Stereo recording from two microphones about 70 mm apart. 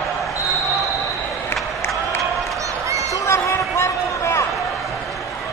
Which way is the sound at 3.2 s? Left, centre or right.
Left.